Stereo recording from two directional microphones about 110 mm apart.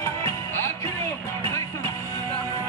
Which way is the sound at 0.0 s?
25° left (ahead or behind).